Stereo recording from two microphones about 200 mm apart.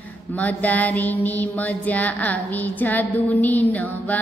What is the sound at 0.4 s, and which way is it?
Music, 10° left (ahead or behind).